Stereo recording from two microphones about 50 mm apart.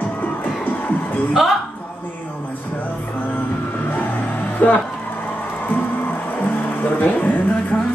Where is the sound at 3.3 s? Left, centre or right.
Left.